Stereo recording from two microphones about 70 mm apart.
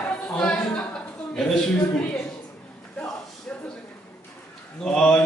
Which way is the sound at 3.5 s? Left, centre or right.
Centre.